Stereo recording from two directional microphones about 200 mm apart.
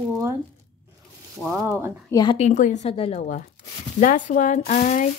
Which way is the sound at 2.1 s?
20° left (ahead or behind).